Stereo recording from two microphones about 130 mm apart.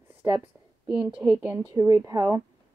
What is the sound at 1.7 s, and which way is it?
Speech, 30° right (ahead or behind).